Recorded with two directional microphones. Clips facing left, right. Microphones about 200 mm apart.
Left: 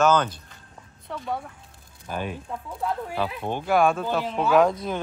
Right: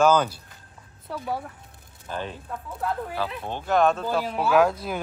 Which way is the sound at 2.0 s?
15° left (ahead or behind).